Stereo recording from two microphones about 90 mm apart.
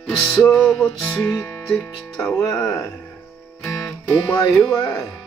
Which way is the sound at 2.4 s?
40° left (ahead or behind).